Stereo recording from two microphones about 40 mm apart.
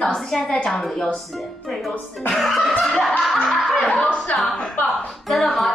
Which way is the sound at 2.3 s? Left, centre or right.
Centre.